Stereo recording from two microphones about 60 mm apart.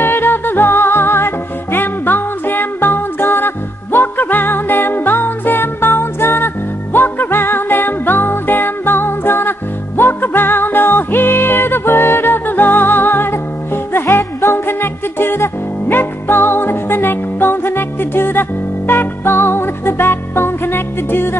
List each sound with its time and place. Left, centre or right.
0.0 s music: left